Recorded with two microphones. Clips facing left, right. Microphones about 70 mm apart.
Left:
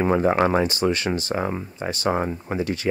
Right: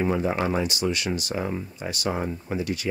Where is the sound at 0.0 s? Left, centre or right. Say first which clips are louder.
Left 5 dB; left.